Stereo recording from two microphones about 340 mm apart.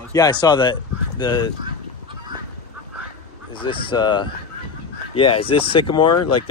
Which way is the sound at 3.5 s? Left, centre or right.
Centre.